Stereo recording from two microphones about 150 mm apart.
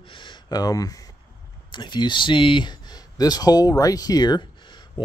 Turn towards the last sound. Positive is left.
turn(degrees=25)  # may be behind; listen again after turning